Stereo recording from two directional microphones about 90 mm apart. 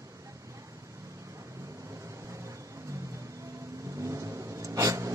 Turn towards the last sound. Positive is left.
turn(degrees=-35)  # may be behind; listen again after turning